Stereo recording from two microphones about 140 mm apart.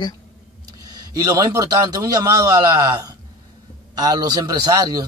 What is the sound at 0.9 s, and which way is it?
Speech, 25° right (ahead or behind).